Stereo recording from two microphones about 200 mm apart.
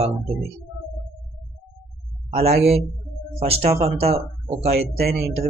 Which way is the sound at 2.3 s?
30° right (ahead or behind).